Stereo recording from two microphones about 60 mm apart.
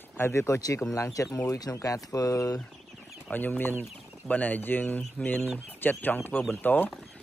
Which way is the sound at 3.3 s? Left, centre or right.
Left.